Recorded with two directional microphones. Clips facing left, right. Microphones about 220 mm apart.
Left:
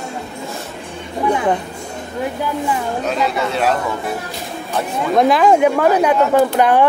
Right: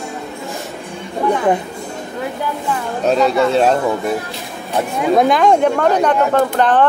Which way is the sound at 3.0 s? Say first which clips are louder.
Right 9 dB; 30° right (ahead or behind).